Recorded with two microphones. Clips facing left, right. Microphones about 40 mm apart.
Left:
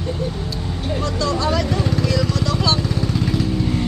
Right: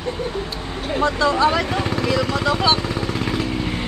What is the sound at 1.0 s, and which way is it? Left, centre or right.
Vehicle, right.